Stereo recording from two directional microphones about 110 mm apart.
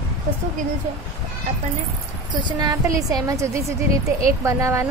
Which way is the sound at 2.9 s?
30° right (ahead or behind).